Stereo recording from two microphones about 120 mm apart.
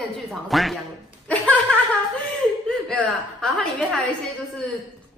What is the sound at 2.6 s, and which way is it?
A woman's voice, 10° left (ahead or behind).